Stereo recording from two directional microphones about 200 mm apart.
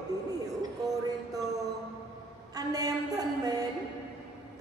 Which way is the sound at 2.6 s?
20° right (ahead or behind).